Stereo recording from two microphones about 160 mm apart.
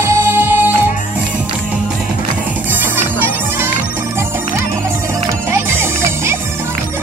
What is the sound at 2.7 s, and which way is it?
Music, 10° right (ahead or behind).